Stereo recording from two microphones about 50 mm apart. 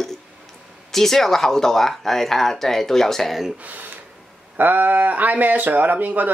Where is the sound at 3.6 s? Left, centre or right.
Right.